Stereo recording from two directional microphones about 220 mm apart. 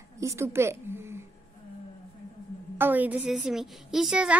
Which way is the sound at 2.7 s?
10° right (ahead or behind).